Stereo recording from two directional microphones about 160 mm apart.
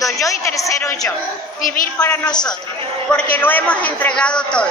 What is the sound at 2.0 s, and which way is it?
A man's voice, 5° left (ahead or behind).